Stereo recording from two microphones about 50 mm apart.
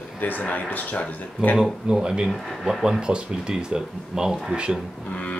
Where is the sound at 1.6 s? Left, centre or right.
Centre.